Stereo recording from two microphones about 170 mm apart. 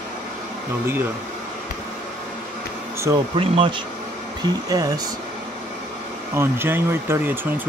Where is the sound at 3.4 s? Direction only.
30° right (ahead or behind).